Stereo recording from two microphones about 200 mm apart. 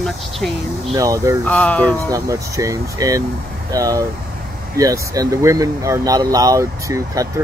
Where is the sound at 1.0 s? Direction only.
15° right (ahead or behind).